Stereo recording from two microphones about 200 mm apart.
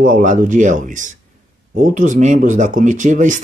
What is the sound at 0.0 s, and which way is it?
Speech, 40° right (ahead or behind).